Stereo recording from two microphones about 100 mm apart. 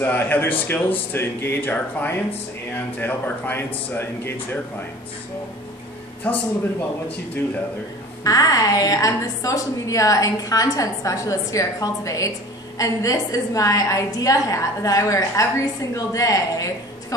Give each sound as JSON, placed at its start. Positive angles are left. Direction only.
{"t": 0.0, "sound": "a man's voice", "side_deg": 20}
{"t": 6.2, "sound": "a man's voice", "side_deg": 20}
{"t": 8.2, "sound": "a woman's voice", "side_deg": 40}